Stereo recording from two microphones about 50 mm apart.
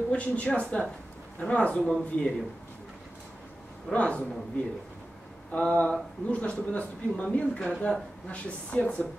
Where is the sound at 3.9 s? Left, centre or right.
Left.